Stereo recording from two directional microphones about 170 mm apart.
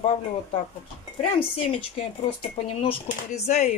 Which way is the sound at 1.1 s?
35° left (ahead or behind).